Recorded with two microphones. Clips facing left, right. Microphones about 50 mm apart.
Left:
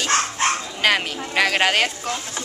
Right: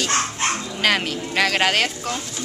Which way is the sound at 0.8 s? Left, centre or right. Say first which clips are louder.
Even; centre.